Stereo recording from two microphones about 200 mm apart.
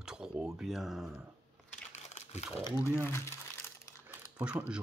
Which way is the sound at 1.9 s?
35° left (ahead or behind).